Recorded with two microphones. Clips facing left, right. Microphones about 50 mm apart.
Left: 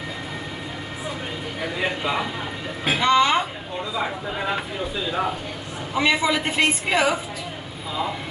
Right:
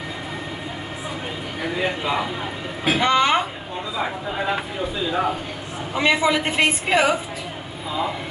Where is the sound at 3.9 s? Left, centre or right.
Centre.